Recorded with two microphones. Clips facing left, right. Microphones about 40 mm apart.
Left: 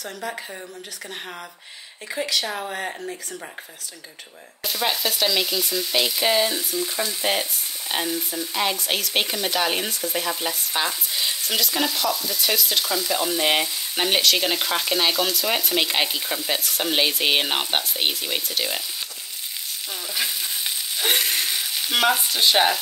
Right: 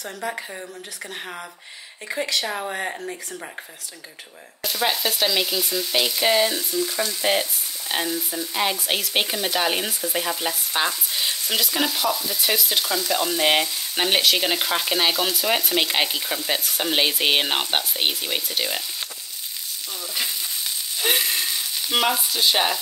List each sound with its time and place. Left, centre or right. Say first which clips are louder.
0.0 s speech: right 1 dB; centre
2.0 s speech: even; centre
4.6 s speech: right 1 dB; centre
6.8 s frying: right 1 dB; centre
7.9 s speech: right 1 dB; centre
21.9 s frying: left 1 dB; left